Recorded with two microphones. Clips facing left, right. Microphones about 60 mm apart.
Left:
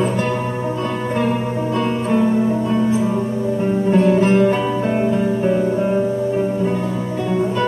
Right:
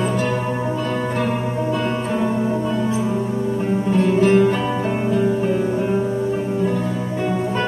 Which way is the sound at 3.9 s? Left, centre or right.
Left.